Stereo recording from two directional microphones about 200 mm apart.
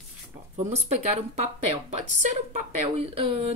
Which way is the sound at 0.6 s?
35° right (ahead or behind).